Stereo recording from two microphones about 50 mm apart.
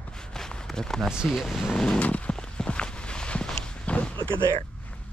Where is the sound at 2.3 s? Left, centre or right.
Centre.